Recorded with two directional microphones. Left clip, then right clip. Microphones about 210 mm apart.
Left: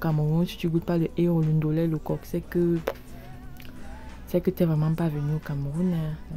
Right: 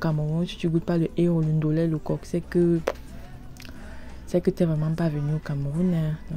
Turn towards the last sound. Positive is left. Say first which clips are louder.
# right 2 dB
turn(degrees=0)  # may be behind; listen again after turning